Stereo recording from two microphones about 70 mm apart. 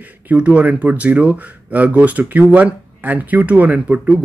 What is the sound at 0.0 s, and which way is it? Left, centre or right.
Speech, right.